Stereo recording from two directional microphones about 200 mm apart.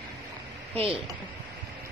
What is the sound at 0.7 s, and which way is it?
Speech, 30° right (ahead or behind).